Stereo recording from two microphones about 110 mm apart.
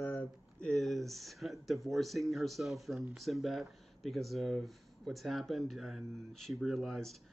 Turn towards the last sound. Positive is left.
turn(degrees=0)  # may be behind; listen again after turning